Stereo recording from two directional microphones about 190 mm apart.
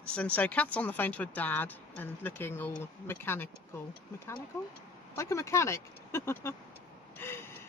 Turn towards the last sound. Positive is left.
turn(degrees=10)  # may be behind; listen again after turning